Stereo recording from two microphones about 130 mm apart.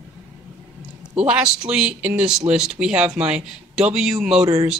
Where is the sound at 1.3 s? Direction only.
10° right (ahead or behind).